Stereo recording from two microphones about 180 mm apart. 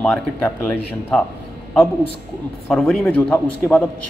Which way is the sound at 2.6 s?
10° left (ahead or behind).